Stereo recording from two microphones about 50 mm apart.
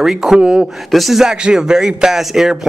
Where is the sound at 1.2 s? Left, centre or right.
Centre.